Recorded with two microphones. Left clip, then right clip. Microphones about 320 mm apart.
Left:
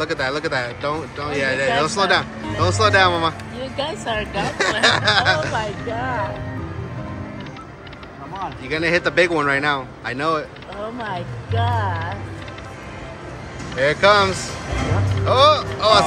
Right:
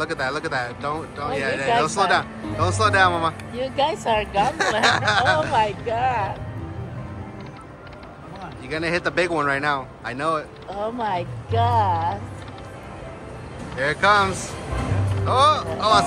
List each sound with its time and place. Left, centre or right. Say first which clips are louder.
0.0 s speech: left 3 dB; centre
3.7 s speech: right 3 dB; right
4.8 s speech: left 3 dB; centre
5.5 s speech: right 3 dB; right
8.6 s speech: left 4 dB; centre
11.0 s speech: right 3 dB; right
13.7 s speech: left 3 dB; centre